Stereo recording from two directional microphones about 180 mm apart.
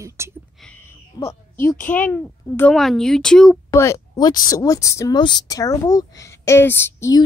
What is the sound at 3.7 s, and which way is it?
A woman's voice, 15° left (ahead or behind).